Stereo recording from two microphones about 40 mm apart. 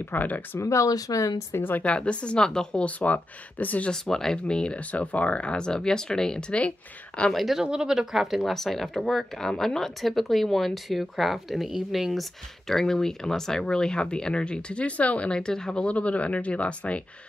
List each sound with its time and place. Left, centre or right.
0.1 s speech: left
1.5 s speech: left
2.0 s speech: left
2.4 s speech: centre
2.8 s speech: left
3.9 s speech: centre
4.7 s speech: left
7.5 s speech: centre
8.4 s speech: centre
12.7 s speech: centre; by 15.3 s left
15.3 s speech: centre